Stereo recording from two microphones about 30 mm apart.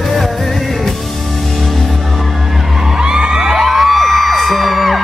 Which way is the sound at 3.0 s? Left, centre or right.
Right.